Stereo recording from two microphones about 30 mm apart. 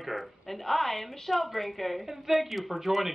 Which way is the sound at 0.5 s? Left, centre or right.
Centre.